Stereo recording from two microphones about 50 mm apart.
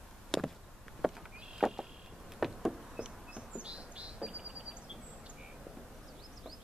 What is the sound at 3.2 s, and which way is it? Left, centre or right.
Bird, centre.